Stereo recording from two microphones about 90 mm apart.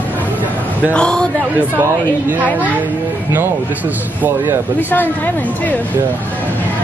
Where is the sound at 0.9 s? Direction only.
10° left (ahead or behind).